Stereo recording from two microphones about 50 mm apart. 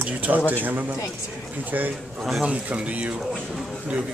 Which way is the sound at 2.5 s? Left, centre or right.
Right.